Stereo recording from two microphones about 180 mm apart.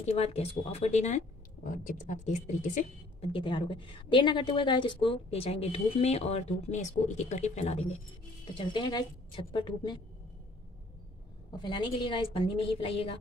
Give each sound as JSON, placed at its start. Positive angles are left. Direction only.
{"t": 0.0, "sound": "a woman's voice", "side_deg": 35}
{"t": 3.3, "sound": "a woman's voice", "side_deg": 30}
{"t": 8.5, "sound": "a woman's voice", "side_deg": 25}
{"t": 11.6, "sound": "a woman's voice", "side_deg": 25}